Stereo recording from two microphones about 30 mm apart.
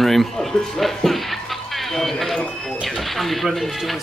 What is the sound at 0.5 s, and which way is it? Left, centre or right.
Speech, centre.